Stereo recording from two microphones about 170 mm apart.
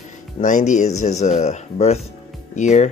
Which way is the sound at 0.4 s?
50° left (ahead or behind).